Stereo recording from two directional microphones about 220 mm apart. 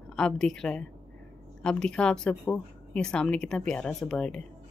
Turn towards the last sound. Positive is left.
turn(degrees=0)  # may be behind; listen again after turning